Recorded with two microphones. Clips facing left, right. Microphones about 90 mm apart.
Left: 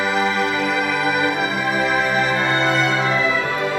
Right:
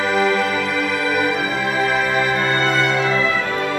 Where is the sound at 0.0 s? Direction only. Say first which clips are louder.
Right 2 dB; 15° left (ahead or behind).